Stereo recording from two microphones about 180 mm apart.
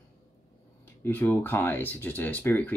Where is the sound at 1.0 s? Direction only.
10° left (ahead or behind).